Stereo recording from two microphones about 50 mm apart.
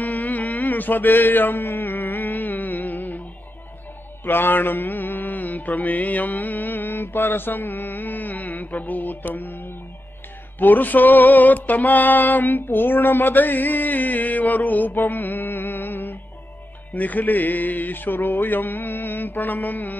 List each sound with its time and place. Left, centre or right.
0.0 s a sound: left
4.2 s mantra: left
10.6 s music: left